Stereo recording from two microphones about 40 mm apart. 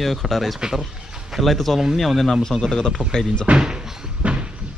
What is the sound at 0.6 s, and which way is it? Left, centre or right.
Speech, centre.